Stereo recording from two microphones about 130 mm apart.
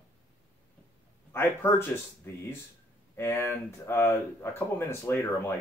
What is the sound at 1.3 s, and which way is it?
Speech, 20° left (ahead or behind).